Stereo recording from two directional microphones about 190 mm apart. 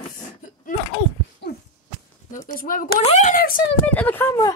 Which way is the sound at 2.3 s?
45° left (ahead or behind).